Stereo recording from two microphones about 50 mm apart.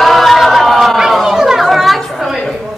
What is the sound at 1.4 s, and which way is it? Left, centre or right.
Chatter, centre.